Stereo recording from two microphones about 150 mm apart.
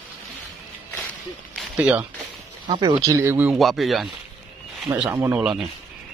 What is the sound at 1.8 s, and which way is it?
Speech, 10° right (ahead or behind).